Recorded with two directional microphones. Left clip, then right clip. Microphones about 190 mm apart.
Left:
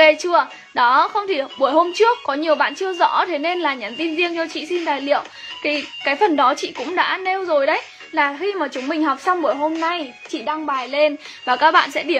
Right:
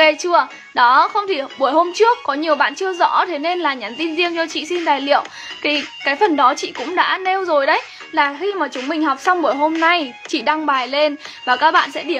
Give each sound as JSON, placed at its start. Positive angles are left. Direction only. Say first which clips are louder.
{"t": 0.0, "sound": "a woman's voice", "louder": "even", "side_deg": 0}
{"t": 10.8, "sound": "a woman's voice", "louder": "right 1 dB", "side_deg": -10}